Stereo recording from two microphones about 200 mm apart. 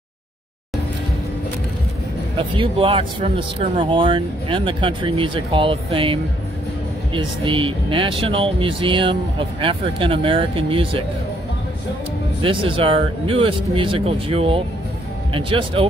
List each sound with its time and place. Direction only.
2.3 s speech: 25° right (ahead or behind)
7.2 s speech: 25° right (ahead or behind)
12.4 s speech: 25° right (ahead or behind)